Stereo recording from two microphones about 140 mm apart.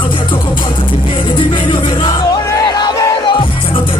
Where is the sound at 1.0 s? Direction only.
35° left (ahead or behind).